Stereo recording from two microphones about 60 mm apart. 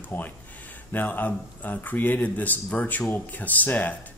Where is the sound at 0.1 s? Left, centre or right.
Left.